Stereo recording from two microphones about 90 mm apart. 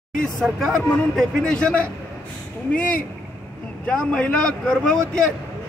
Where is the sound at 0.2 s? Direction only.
Centre (ahead or behind).